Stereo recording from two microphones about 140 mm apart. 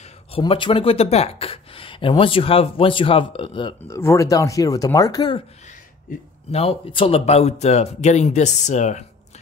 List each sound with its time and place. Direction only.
0.4 s speech: 35° left (ahead or behind)
3.8 s speech: 20° left (ahead or behind)
6.5 s speech: 45° left (ahead or behind)